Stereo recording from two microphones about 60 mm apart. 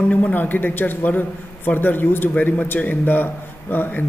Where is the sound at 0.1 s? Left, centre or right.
Left.